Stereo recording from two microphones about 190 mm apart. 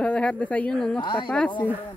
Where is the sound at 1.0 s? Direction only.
25° left (ahead or behind).